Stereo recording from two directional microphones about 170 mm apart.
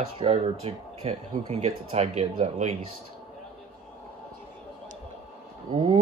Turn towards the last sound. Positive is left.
turn(degrees=-35)  # may be behind; listen again after turning